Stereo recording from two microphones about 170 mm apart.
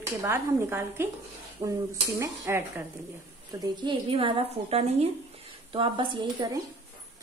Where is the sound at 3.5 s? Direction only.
30° right (ahead or behind).